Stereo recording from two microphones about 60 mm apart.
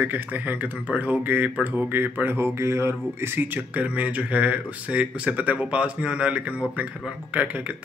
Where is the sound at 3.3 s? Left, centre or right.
Right.